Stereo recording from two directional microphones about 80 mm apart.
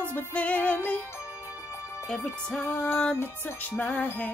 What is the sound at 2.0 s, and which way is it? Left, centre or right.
Music, centre.